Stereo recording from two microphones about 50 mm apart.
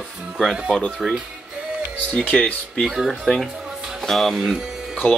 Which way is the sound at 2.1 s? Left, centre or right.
Left.